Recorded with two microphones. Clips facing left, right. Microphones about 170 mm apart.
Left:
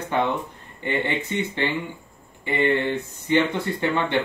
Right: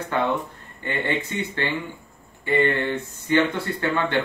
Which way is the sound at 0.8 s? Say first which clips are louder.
Left 1 dB; 15° left (ahead or behind).